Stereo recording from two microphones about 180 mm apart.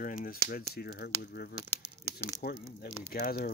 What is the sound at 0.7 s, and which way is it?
Speech, 60° left (ahead or behind).